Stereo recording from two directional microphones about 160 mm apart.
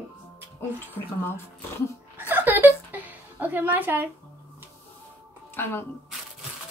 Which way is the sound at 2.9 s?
10° right (ahead or behind).